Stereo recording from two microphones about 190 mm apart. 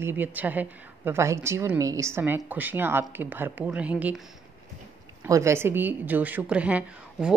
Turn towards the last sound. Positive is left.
turn(degrees=-5)  # may be behind; listen again after turning